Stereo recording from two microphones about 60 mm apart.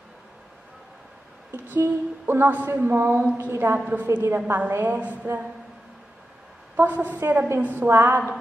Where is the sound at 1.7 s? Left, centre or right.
Right.